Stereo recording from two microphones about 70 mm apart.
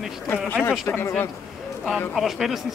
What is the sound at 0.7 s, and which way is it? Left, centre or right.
Speech, left.